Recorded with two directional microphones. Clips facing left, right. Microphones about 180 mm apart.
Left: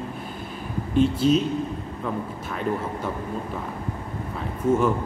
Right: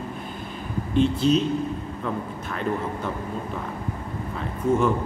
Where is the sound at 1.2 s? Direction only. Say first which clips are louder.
Left 1 dB; 45° left (ahead or behind).